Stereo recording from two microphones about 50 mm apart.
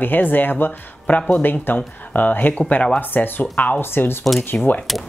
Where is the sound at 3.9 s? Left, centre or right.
Left.